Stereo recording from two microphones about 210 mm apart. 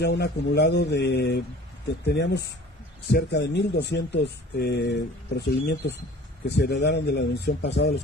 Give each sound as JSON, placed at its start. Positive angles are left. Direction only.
{"t": 0.0, "sound": "speech", "side_deg": 50}